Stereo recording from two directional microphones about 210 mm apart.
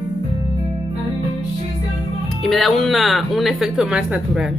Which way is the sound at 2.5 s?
Centre (ahead or behind).